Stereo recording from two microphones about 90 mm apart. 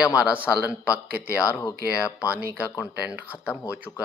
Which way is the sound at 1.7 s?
35° left (ahead or behind).